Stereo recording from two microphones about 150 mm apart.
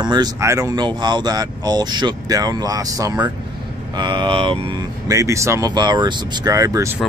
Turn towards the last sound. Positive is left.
turn(degrees=-20)  # may be behind; listen again after turning